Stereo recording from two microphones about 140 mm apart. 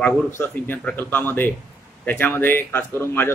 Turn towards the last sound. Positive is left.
turn(degrees=15)  # may be behind; listen again after turning